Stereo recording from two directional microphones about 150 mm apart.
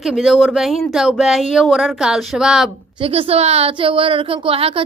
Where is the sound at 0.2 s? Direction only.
Centre (ahead or behind).